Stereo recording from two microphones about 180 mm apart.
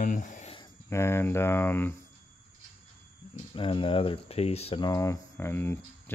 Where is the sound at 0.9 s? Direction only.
15° left (ahead or behind).